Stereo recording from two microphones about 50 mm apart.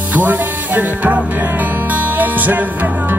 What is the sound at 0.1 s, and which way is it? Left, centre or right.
Music, right.